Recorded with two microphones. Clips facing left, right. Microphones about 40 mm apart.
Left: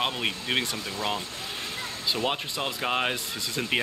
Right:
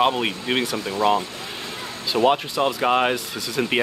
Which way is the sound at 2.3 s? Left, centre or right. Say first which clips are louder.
Right 10 dB; centre.